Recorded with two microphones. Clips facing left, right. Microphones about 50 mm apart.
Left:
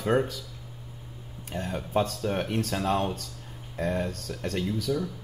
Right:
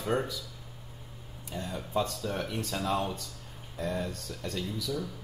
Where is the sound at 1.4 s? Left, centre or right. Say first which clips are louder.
Left 4 dB; left.